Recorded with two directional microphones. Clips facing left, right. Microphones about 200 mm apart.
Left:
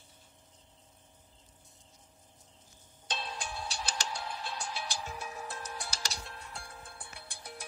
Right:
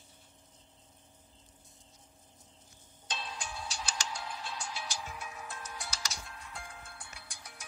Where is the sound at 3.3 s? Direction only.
60° left (ahead or behind).